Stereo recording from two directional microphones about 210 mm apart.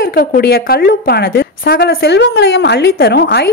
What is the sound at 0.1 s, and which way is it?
A woman's voice, 45° left (ahead or behind).